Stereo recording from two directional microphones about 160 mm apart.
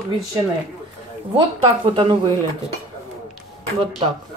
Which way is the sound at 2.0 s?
30° right (ahead or behind).